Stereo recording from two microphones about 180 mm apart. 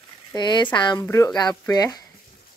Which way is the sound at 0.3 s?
25° left (ahead or behind).